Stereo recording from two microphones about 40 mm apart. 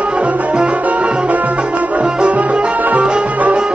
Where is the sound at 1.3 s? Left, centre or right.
Right.